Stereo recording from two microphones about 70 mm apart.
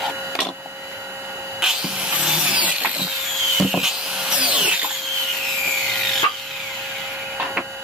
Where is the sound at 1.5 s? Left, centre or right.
Centre.